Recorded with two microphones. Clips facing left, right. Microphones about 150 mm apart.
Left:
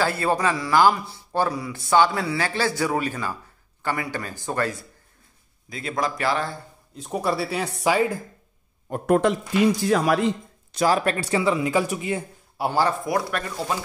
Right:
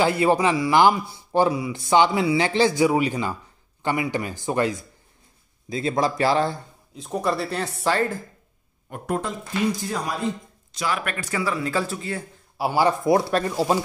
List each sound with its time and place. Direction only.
0.0 s speech: 15° right (ahead or behind)
5.7 s speech: 25° right (ahead or behind)
7.0 s speech: 5° left (ahead or behind)
9.0 s speech: 70° left (ahead or behind)
9.8 s speech: 90° left
10.8 s speech: 35° left (ahead or behind); by 12.3 s 15° left (ahead or behind)
12.5 s speech: 5° right (ahead or behind)
12.8 s speech: 25° right (ahead or behind)